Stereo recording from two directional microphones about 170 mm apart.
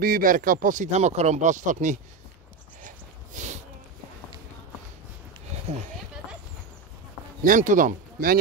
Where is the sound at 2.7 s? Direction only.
50° right (ahead or behind).